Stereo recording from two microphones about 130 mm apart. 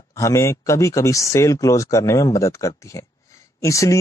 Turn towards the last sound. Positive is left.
turn(degrees=25)  # may be behind; listen again after turning